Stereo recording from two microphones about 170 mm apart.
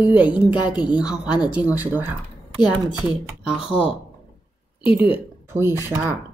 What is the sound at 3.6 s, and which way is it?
Speech, 35° left (ahead or behind).